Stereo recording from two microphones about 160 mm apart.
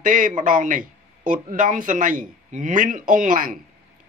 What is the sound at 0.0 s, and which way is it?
Speech, 55° right (ahead or behind).